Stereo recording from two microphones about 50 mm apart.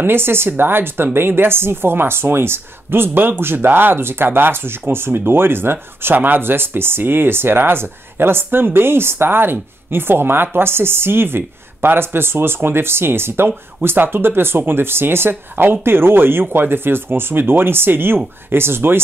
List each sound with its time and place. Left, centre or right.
0.0 s speech: right
6.1 s speech: right